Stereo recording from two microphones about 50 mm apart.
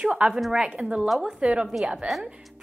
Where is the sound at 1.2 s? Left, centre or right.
Right.